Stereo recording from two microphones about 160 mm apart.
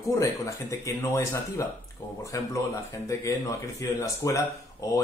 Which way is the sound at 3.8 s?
20° left (ahead or behind).